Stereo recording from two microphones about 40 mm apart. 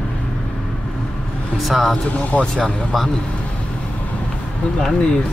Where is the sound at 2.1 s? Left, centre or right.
Left.